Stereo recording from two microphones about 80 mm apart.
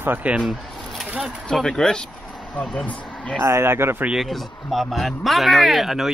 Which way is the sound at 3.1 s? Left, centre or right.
Centre.